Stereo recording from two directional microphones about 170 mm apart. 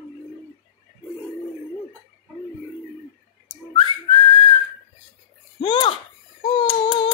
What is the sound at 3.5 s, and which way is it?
Whistling, 30° left (ahead or behind).